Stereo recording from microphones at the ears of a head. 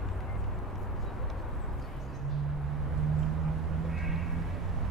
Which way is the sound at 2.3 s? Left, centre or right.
Right.